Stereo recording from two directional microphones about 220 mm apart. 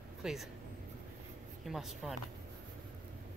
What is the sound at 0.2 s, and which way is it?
Speech, centre (ahead or behind).